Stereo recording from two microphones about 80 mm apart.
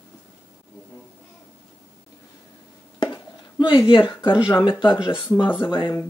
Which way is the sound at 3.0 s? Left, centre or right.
Left.